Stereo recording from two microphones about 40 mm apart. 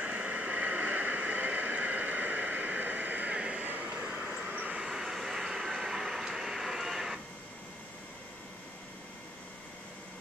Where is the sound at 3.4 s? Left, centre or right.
Right.